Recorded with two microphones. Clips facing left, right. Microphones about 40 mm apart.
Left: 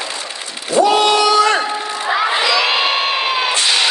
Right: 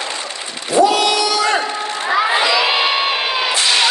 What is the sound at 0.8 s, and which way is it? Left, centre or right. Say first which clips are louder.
Speech: left 1 dB; left.